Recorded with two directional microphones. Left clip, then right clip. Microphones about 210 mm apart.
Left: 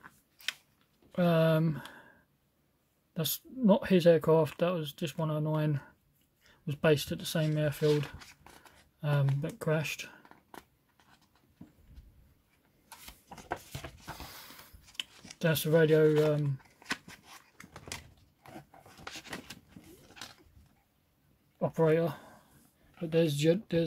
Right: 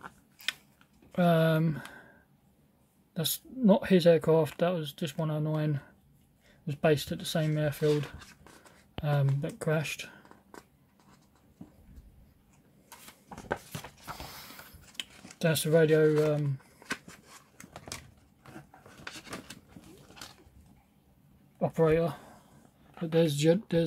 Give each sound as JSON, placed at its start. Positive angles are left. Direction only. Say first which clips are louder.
{"t": 1.1, "sound": "speech", "louder": "right 1 dB", "side_deg": 0}
{"t": 3.2, "sound": "speech", "louder": "right 2 dB", "side_deg": 5}
{"t": 9.4, "sound": "speech", "louder": "right 1 dB", "side_deg": 0}
{"t": 15.2, "sound": "speech", "louder": "right 2 dB", "side_deg": 5}
{"t": 16.8, "sound": "a sound", "louder": "even", "side_deg": 30}
{"t": 19.1, "sound": "a sound", "louder": "even", "side_deg": 10}
{"t": 21.5, "sound": "speech", "louder": "right 2 dB", "side_deg": 0}